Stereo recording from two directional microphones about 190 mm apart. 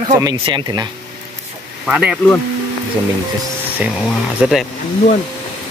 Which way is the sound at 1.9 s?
5° right (ahead or behind).